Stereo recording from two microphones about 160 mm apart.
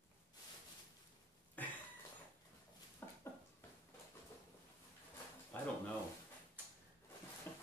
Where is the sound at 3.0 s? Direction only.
15° left (ahead or behind).